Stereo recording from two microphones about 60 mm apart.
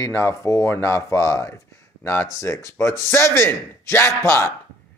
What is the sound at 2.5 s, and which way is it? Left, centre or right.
Speech, left.